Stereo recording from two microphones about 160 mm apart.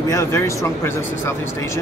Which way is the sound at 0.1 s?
15° left (ahead or behind).